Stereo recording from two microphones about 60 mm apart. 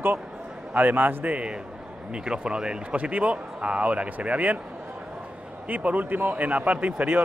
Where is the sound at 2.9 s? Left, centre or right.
Right.